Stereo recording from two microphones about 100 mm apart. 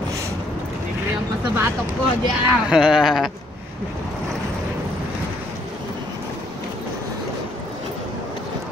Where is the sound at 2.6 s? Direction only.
5° right (ahead or behind).